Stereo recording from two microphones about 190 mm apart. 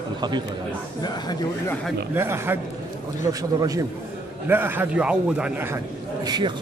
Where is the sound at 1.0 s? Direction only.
20° left (ahead or behind).